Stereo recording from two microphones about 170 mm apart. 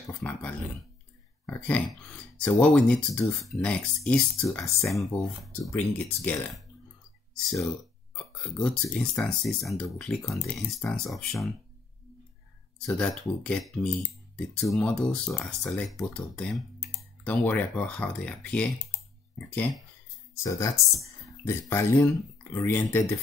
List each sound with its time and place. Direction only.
0.2 s speech: 10° left (ahead or behind)
5.6 s speech: 10° left (ahead or behind)
12.7 s speech: 5° left (ahead or behind)